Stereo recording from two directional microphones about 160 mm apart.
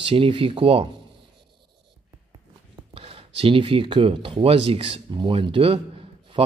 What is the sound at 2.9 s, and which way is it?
Speech, 35° right (ahead or behind).